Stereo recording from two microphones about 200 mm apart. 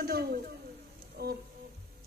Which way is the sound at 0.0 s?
50° right (ahead or behind).